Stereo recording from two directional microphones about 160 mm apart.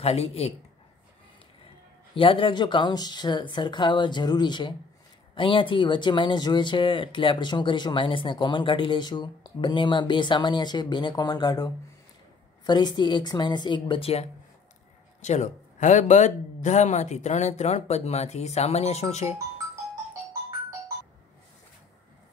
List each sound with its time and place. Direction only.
0.0 s a man's voice: 40° left (ahead or behind)
2.1 s speech: 35° left (ahead or behind)